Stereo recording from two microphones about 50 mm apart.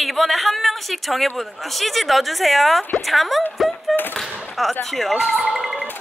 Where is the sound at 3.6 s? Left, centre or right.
Centre.